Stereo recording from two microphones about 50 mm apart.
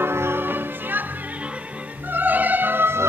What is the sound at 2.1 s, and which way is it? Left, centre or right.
Opera, right.